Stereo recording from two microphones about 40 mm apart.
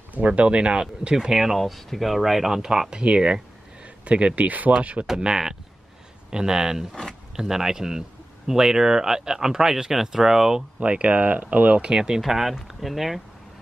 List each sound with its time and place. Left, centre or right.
0.1 s speech: right; by 1.6 s centre
1.6 s speech: centre; by 3.3 s right
3.8 s a sound: right
4.4 s speech: right
5.1 s speech: centre
6.9 s speech: centre
7.3 s speech: centre
10.8 s speech: right
11.8 s speech: centre
12.2 s speech: centre